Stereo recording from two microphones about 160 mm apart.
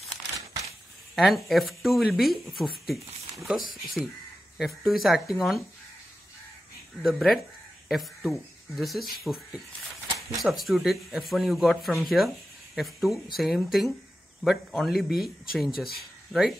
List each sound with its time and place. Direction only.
1.1 s speech: centre (ahead or behind)
3.8 s speech: centre (ahead or behind)
7.0 s speech: centre (ahead or behind)
10.0 s a sound: 20° right (ahead or behind)
10.4 s speech: centre (ahead or behind)